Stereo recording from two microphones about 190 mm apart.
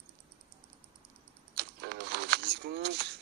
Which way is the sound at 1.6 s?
60° right (ahead or behind).